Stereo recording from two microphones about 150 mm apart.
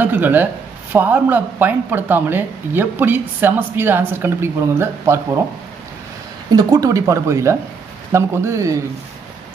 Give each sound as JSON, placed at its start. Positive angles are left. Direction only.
{"t": 0.0, "sound": "speech", "side_deg": -10}
{"t": 6.5, "sound": "speech", "side_deg": -25}